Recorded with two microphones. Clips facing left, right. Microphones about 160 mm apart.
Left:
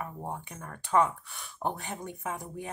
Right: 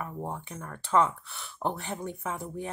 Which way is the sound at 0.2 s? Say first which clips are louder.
Right 2 dB; 15° left (ahead or behind).